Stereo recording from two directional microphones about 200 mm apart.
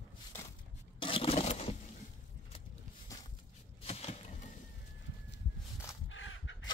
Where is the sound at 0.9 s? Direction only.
25° left (ahead or behind).